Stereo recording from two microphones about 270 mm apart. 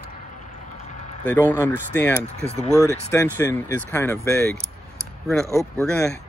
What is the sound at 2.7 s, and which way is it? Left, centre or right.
Speech, centre.